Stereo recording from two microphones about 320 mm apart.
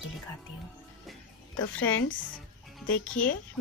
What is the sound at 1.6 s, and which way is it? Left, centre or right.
Speech, left.